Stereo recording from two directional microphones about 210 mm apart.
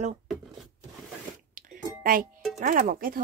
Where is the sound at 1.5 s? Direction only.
40° right (ahead or behind).